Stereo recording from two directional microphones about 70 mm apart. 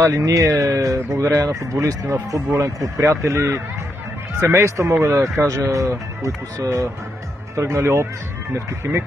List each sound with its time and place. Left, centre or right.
0.0 s speech: right